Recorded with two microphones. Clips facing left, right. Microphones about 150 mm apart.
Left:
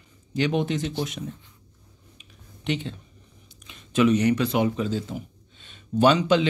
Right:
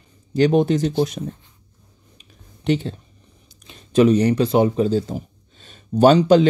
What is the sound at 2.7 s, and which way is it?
Speech, 40° right (ahead or behind).